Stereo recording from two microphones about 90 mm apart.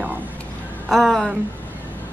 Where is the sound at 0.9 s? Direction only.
Centre (ahead or behind).